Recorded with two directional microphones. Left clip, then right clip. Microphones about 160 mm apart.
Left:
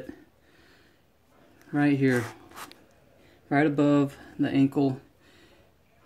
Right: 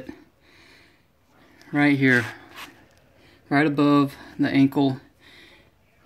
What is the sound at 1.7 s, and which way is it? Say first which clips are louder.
Speech: right 5 dB; 25° right (ahead or behind).